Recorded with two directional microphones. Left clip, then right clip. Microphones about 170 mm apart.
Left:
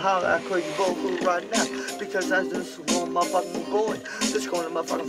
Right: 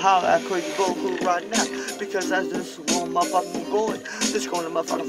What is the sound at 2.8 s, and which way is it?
Music, 40° right (ahead or behind).